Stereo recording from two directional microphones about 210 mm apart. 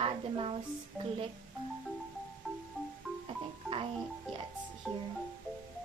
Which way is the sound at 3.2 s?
25° right (ahead or behind).